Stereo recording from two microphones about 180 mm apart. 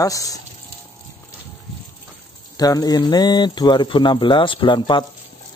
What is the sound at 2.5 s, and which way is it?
A man's voice, 20° left (ahead or behind).